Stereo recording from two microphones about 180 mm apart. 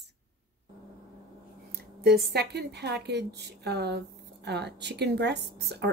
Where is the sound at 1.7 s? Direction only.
60° right (ahead or behind).